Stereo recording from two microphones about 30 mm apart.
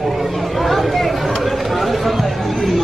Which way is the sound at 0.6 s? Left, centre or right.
Centre.